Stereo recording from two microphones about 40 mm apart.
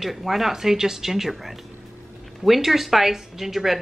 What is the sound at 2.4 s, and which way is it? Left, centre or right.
A woman's voice, centre.